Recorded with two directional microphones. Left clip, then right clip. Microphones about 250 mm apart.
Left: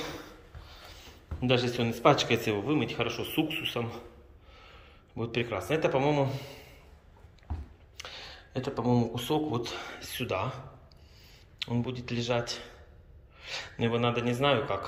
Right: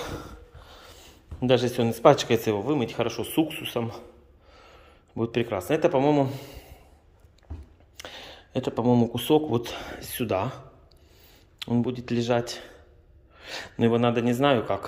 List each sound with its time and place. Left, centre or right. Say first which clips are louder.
0.0 s speech: right 3 dB; right
8.0 s speech: right 2 dB; right
11.6 s speech: right 6 dB; right